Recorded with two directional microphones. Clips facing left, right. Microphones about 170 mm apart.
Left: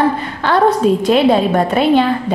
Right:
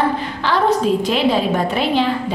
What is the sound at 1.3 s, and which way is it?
Speech, 50° left (ahead or behind).